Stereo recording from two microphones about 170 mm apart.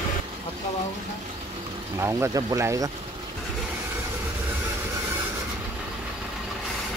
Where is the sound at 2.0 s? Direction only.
15° right (ahead or behind).